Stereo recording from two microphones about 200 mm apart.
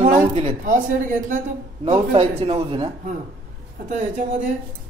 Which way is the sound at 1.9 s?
30° right (ahead or behind).